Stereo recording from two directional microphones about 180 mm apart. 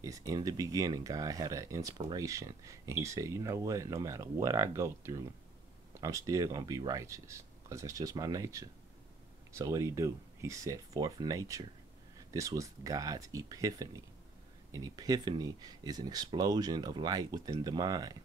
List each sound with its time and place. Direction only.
0.0 s speech: 20° right (ahead or behind)